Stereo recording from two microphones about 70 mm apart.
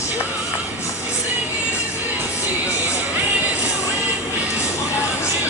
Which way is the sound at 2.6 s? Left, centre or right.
Right.